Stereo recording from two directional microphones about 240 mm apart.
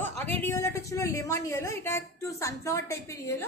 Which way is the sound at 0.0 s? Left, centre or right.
Centre.